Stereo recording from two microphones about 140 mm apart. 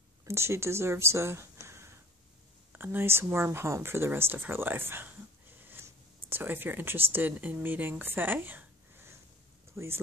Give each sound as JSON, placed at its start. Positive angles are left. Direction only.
{"t": 0.2, "sound": "speech", "side_deg": -20}
{"t": 8.0, "sound": "a sound", "side_deg": -15}
{"t": 9.8, "sound": "speech", "side_deg": -20}